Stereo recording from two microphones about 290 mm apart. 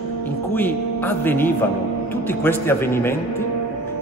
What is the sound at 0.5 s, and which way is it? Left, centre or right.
A man's voice, centre.